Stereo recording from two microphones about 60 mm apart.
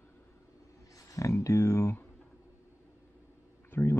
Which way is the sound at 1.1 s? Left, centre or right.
Left.